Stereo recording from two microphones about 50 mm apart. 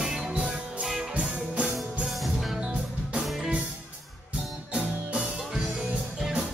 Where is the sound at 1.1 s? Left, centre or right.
Right.